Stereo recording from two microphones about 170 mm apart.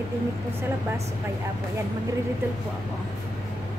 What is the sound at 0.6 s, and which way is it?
Speech, 15° right (ahead or behind).